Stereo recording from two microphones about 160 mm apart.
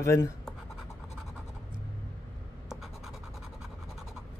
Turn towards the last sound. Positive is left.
turn(degrees=0)  # may be behind; listen again after turning